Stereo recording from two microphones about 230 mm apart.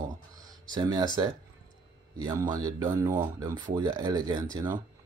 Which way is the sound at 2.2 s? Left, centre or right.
Centre.